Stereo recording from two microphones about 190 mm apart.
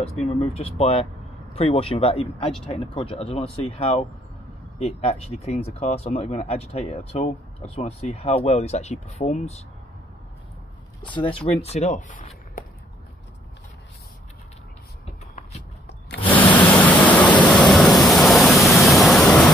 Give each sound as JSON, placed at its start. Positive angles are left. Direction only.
{"t": 0.2, "sound": "speech", "side_deg": 35}
{"t": 11.2, "sound": "speech", "side_deg": 30}
{"t": 16.3, "sound": "waterfall", "side_deg": 10}